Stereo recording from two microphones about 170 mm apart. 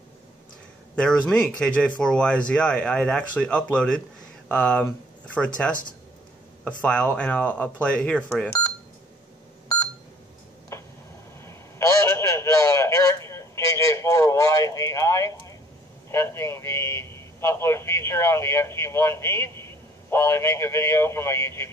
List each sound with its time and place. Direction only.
0.9 s speech: 5° left (ahead or behind)
6.8 s speech: 5° left (ahead or behind)
10.7 s a sound: 15° left (ahead or behind)